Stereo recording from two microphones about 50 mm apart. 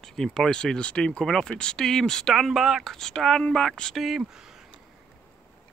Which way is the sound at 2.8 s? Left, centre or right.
Centre.